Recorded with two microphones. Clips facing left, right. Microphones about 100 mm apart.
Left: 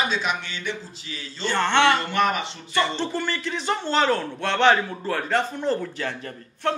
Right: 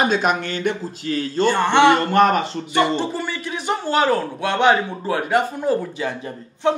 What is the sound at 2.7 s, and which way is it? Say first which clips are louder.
Speech: right 5 dB; 15° right (ahead or behind).